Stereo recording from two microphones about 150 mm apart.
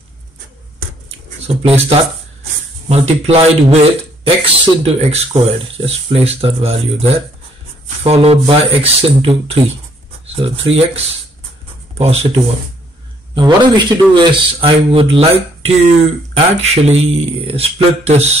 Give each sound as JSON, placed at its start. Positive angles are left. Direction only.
{"t": 1.5, "sound": "speech", "side_deg": -40}
{"t": 12.0, "sound": "speech", "side_deg": -45}
{"t": 13.3, "sound": "speech", "side_deg": -30}